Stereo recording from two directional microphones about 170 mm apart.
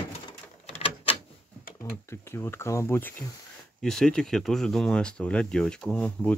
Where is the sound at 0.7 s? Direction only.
35° left (ahead or behind).